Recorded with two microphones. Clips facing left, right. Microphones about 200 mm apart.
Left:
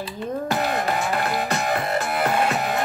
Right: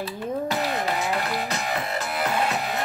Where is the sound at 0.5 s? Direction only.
55° left (ahead or behind).